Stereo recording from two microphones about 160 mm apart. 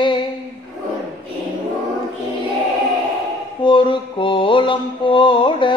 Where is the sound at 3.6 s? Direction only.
30° left (ahead or behind).